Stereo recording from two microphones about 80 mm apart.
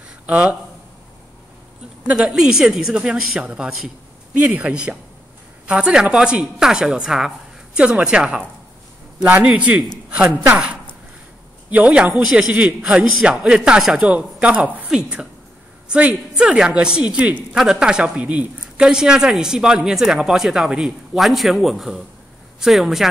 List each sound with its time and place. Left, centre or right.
0.3 s a woman's voice: centre
2.0 s a woman's voice: centre
10.0 s a sound: centre
11.7 s a woman's voice: centre